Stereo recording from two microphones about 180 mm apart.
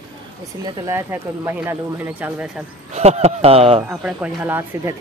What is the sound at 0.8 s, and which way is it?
Speech, 15° right (ahead or behind).